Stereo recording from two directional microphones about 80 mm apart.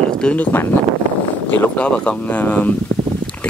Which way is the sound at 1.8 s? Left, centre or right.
Centre.